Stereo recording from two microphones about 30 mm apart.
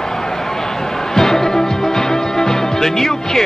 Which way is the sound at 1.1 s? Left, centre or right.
Centre.